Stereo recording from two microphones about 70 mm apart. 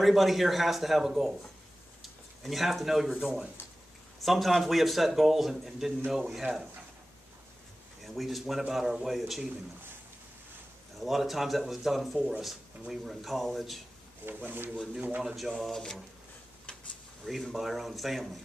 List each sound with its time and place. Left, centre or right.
0.0 s a man's voice: centre
8.0 s a man's voice: centre
11.0 s a man's voice: centre
14.2 s speech: right
15.0 s speech: centre
15.2 s a man's voice: centre
15.5 s speech: centre
17.2 s a man's voice: centre